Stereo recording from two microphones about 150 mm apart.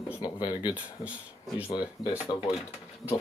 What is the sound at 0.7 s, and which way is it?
Speech, 10° right (ahead or behind).